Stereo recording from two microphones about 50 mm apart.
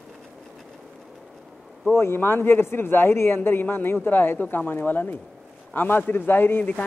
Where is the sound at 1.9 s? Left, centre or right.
Left.